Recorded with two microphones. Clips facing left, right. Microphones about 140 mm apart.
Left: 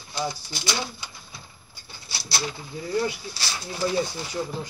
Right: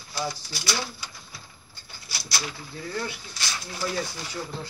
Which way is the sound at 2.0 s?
30° left (ahead or behind).